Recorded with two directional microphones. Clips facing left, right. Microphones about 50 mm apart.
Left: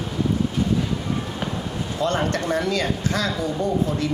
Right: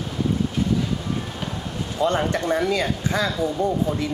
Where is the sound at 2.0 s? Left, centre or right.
Centre.